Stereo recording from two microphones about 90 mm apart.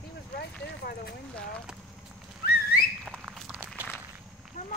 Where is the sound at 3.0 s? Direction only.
10° right (ahead or behind).